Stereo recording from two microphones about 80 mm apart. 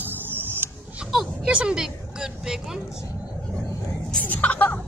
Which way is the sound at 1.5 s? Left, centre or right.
Centre.